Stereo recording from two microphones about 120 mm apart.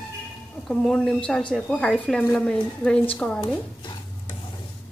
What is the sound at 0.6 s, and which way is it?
A woman's voice, 5° left (ahead or behind).